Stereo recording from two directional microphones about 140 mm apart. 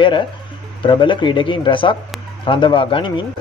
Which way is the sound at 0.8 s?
35° left (ahead or behind).